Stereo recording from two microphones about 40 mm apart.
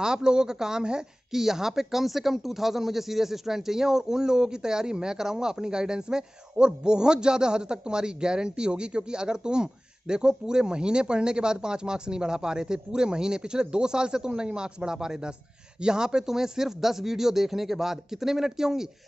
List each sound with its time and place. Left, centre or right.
0.0 s speech: centre